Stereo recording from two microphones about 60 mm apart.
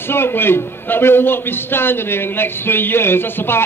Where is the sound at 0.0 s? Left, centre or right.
Left.